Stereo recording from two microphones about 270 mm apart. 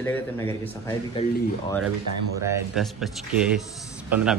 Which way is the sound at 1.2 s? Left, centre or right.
Left.